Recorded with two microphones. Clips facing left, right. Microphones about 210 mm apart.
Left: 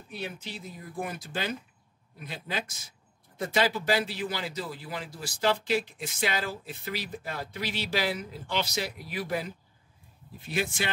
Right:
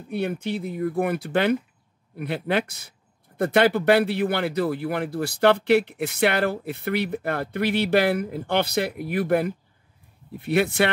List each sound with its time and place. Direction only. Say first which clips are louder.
0.1 s speech: right 12 dB; 60° right (ahead or behind)